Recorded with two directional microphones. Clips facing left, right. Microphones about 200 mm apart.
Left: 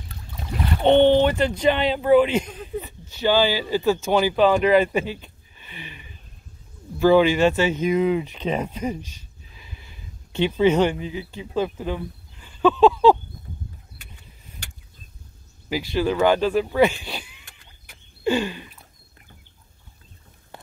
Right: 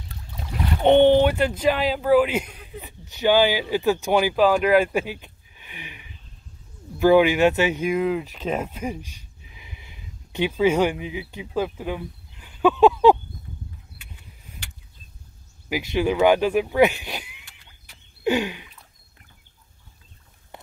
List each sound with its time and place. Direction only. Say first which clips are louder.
0.5 s speech: even; 15° right (ahead or behind)
15.7 s speech: even; 15° right (ahead or behind)
18.2 s a sound: even; 15° right (ahead or behind)